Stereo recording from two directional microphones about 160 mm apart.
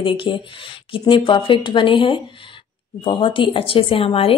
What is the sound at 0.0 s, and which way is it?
A woman's voice, 30° left (ahead or behind).